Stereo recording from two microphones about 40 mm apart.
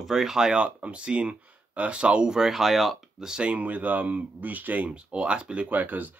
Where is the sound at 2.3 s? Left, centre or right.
Centre.